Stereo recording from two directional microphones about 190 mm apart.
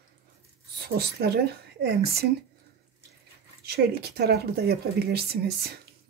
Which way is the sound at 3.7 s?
55° right (ahead or behind).